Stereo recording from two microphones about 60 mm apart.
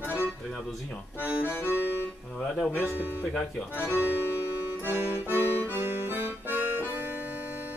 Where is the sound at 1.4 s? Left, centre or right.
Left.